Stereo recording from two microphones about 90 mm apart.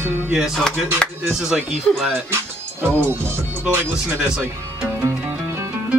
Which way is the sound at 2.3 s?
25° right (ahead or behind).